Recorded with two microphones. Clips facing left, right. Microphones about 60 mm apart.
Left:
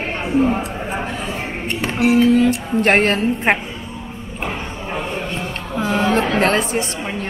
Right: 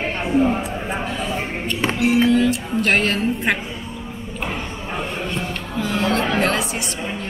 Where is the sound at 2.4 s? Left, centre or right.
Left.